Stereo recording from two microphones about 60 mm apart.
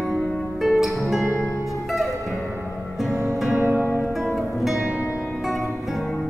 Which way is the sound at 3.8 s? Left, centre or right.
Left.